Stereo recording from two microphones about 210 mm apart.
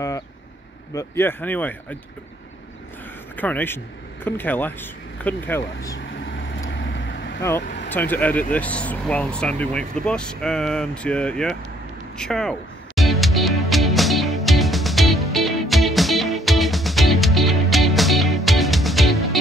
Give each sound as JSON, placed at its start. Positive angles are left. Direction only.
{"t": 0.9, "sound": "speech", "side_deg": 10}
{"t": 3.3, "sound": "speech", "side_deg": 10}
{"t": 6.6, "sound": "vehicle", "side_deg": 60}
{"t": 7.9, "sound": "speech", "side_deg": 10}
{"t": 12.2, "sound": "music", "side_deg": 0}